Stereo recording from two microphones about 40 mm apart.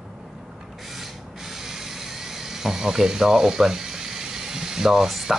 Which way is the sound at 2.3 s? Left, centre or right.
Centre.